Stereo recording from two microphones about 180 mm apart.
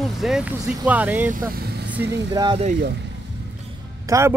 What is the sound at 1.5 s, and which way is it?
Vehicle, 65° right (ahead or behind).